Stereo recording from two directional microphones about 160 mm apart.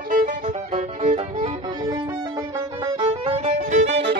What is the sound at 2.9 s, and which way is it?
Violin, 35° right (ahead or behind).